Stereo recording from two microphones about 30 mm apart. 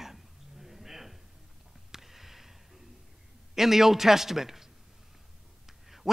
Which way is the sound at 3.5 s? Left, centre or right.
Centre.